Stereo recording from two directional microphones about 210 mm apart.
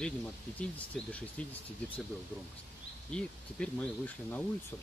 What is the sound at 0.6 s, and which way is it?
Speech, 5° left (ahead or behind).